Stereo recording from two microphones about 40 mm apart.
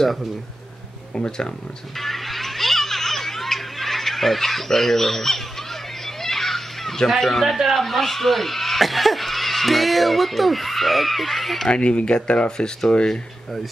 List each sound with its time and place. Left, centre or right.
1.1 s speech: left
2.0 s music: centre
7.2 s speech: centre
7.4 s speech: centre
7.7 s speech: centre
11.7 s speech: left